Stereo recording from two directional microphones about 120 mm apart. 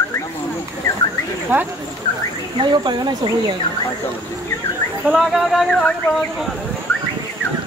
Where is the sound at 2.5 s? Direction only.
40° right (ahead or behind).